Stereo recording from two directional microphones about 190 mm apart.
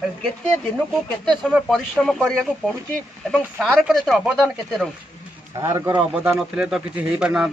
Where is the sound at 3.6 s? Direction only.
Centre (ahead or behind).